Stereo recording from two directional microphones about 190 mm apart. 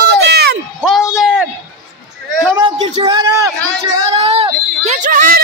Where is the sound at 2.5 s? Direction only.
30° right (ahead or behind).